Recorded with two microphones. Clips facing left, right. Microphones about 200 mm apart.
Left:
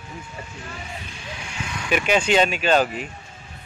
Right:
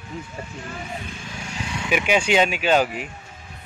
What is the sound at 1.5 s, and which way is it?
Vehicle, 30° right (ahead or behind).